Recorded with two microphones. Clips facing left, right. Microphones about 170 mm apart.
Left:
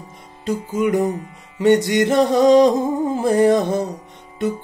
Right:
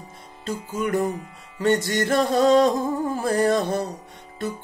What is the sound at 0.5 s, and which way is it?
Music, 15° left (ahead or behind).